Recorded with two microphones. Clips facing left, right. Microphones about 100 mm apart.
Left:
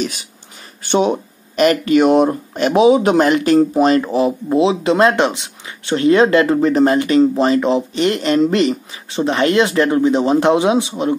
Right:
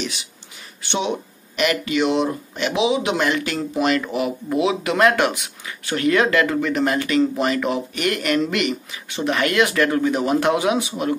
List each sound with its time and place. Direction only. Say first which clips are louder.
0.0 s speech: left 6 dB; 45° left (ahead or behind); by 11.1 s 25° left (ahead or behind)